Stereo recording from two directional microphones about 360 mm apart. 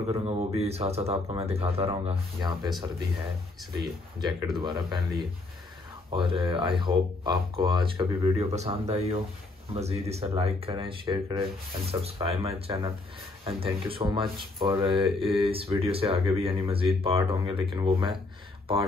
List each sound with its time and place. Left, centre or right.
0.1 s speech: centre
3.7 s speech: centre
6.0 s speech: centre